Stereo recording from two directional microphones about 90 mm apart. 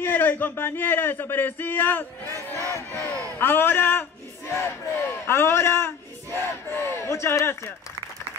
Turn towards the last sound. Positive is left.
turn(degrees=30)  # may be behind; listen again after turning